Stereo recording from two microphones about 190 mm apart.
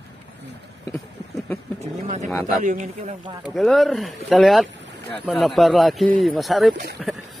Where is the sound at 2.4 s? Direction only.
40° right (ahead or behind).